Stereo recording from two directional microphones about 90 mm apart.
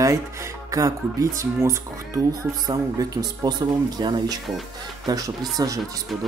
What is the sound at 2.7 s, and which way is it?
Speech, 45° right (ahead or behind).